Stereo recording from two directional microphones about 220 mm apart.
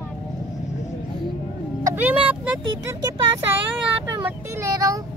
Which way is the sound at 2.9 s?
15° right (ahead or behind).